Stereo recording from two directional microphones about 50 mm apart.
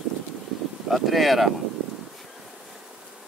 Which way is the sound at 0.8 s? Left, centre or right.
Centre.